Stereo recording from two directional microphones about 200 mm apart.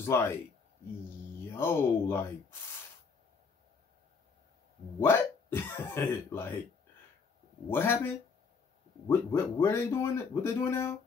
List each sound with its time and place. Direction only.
0.1 s speech: 15° left (ahead or behind)
1.6 s speech: 10° left (ahead or behind)
5.0 s speech: 10° left (ahead or behind)
7.7 s speech: 10° left (ahead or behind)